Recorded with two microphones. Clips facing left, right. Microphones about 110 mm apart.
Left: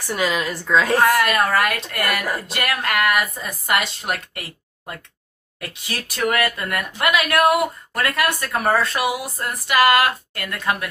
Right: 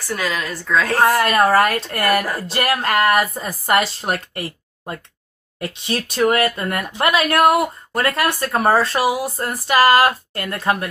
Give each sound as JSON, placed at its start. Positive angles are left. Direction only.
{"t": 0.0, "sound": "a woman's voice", "side_deg": 20}
{"t": 0.9, "sound": "a woman's voice", "side_deg": -15}
{"t": 1.2, "sound": "speech", "side_deg": -35}